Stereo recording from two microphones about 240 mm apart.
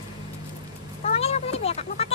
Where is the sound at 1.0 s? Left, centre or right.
Left.